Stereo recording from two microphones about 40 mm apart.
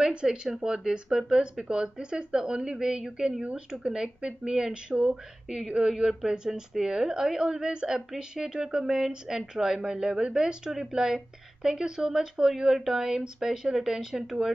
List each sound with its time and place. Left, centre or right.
0.1 s a woman's voice: right